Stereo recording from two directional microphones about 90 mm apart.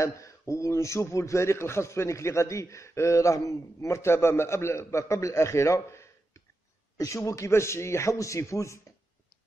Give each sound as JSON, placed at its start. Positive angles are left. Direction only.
{"t": 0.0, "sound": "a man's voice", "side_deg": 35}